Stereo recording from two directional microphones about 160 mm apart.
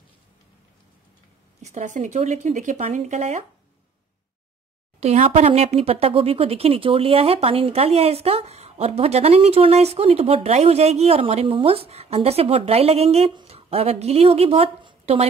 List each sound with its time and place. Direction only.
1.6 s speech: 50° right (ahead or behind)
5.0 s speech: 40° right (ahead or behind)